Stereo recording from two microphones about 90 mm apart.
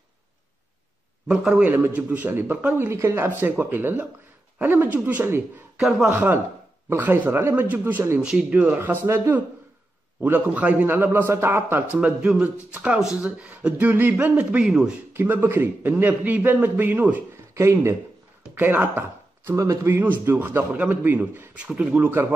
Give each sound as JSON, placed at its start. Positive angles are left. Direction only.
{"t": 1.6, "sound": "a man's voice", "side_deg": -20}
{"t": 2.9, "sound": "a man's voice", "side_deg": -30}
{"t": 5.8, "sound": "speech", "side_deg": 0}
{"t": 6.0, "sound": "a man's voice", "side_deg": -25}
{"t": 8.2, "sound": "speech", "side_deg": -10}
{"t": 9.0, "sound": "speech", "side_deg": -30}
{"t": 10.2, "sound": "a man's voice", "side_deg": -20}
{"t": 15.1, "sound": "a man's voice", "side_deg": -25}
{"t": 17.6, "sound": "speech", "side_deg": -30}
{"t": 19.5, "sound": "speech", "side_deg": -35}
{"t": 19.9, "sound": "a man's voice", "side_deg": -20}